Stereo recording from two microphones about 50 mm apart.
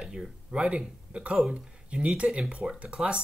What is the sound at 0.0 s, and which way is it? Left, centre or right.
Speech, centre.